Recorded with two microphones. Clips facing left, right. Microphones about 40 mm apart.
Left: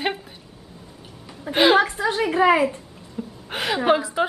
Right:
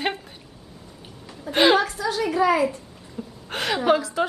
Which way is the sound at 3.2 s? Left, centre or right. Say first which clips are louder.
Left 1 dB; centre.